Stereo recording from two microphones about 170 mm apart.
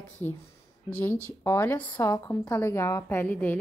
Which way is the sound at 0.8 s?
10° left (ahead or behind).